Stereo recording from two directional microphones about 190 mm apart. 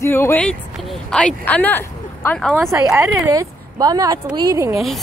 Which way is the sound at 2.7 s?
10° right (ahead or behind).